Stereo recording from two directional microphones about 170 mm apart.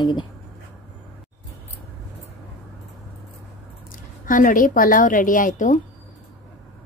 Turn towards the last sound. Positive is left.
turn(degrees=50)  # may be behind; listen again after turning